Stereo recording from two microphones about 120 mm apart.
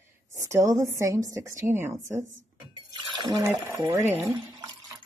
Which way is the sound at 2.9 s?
40° right (ahead or behind).